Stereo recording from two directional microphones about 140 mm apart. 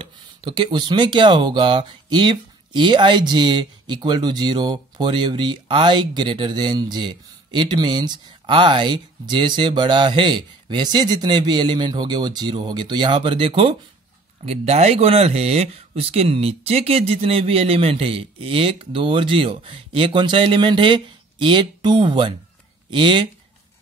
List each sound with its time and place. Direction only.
0.0 s speech: 35° right (ahead or behind)